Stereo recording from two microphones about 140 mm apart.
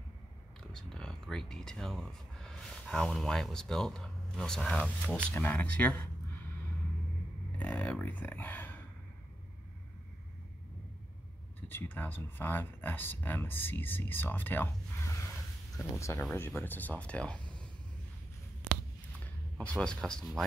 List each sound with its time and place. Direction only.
0.7 s speech: 5° left (ahead or behind)
7.5 s speech: 10° left (ahead or behind)
11.6 s speech: 15° left (ahead or behind)
19.6 s speech: 10° left (ahead or behind)